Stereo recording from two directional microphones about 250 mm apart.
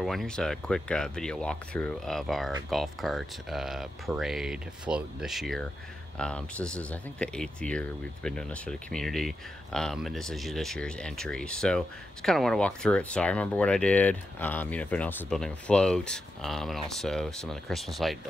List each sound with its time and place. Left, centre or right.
0.0 s speech: centre